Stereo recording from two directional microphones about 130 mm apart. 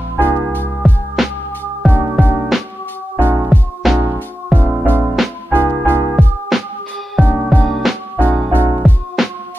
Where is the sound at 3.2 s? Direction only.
15° right (ahead or behind).